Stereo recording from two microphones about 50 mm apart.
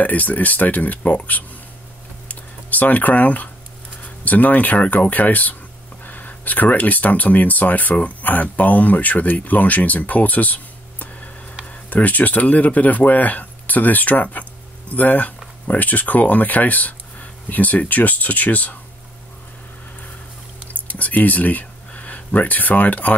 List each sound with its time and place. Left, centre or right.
0.0 s speech: left
2.2 s a sound: left
4.0 s speech: left
20.9 s speech: left